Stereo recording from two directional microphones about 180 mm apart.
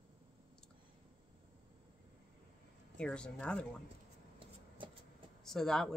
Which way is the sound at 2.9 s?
5° left (ahead or behind).